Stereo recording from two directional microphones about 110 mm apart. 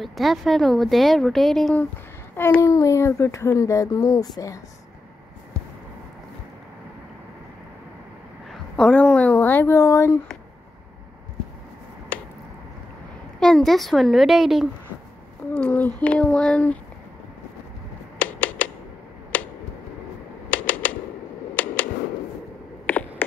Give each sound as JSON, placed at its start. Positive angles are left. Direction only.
{"t": 0.0, "sound": "speech", "side_deg": 0}
{"t": 2.3, "sound": "a child's voice", "side_deg": 20}
{"t": 8.5, "sound": "speech", "side_deg": 5}
{"t": 13.4, "sound": "speech", "side_deg": 5}
{"t": 15.5, "sound": "a child's voice", "side_deg": 15}
{"t": 18.2, "sound": "typewriter", "side_deg": 15}
{"t": 19.3, "sound": "tick-tock", "side_deg": 15}
{"t": 20.4, "sound": "typewriter", "side_deg": 15}
{"t": 22.8, "sound": "a sound", "side_deg": 15}